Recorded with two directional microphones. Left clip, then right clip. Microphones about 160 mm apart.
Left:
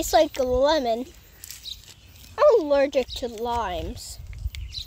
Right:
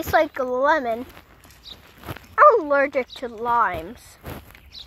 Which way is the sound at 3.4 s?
15° left (ahead or behind).